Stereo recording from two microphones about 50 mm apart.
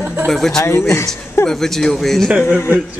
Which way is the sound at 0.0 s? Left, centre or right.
Right.